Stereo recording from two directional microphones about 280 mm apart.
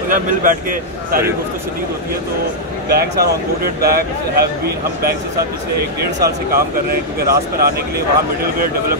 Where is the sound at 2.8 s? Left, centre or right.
Right.